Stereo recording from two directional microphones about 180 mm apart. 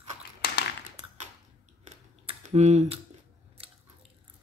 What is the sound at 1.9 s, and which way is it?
Typing, 40° right (ahead or behind).